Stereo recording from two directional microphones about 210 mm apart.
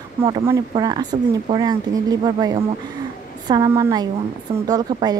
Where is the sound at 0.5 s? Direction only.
20° right (ahead or behind).